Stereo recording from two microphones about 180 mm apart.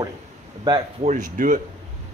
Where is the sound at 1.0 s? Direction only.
45° right (ahead or behind).